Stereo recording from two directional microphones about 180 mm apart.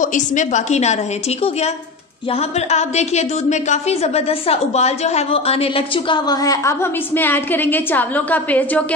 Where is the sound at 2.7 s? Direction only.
40° left (ahead or behind).